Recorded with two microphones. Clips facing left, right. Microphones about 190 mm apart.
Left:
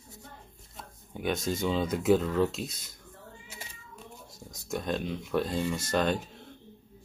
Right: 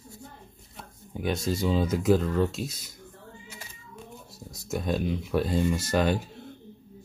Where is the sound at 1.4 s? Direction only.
35° right (ahead or behind).